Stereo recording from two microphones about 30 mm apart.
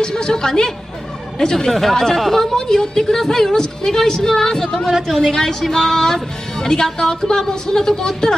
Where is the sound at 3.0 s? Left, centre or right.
Centre.